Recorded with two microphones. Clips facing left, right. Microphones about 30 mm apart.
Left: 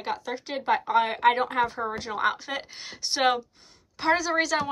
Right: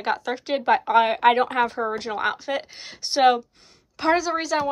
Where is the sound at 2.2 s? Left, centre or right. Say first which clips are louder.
Even; centre.